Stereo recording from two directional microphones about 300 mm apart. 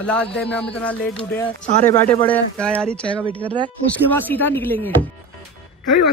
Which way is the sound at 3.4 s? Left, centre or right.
Centre.